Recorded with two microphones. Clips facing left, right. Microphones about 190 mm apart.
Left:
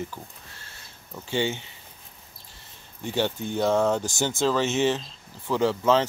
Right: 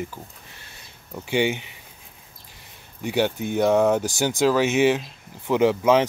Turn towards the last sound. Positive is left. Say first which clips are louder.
# right 4 dB
turn(degrees=-15)  # may be behind; listen again after turning